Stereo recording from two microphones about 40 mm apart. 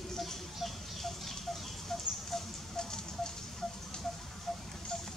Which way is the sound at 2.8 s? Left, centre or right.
Centre.